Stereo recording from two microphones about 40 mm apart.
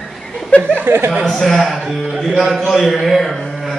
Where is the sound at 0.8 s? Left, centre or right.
Right.